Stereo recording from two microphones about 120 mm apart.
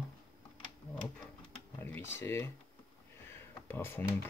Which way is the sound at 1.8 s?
20° left (ahead or behind).